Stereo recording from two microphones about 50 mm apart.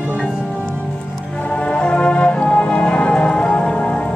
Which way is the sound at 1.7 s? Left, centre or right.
Left.